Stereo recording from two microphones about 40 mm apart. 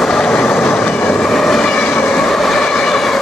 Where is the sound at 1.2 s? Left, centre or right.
Centre.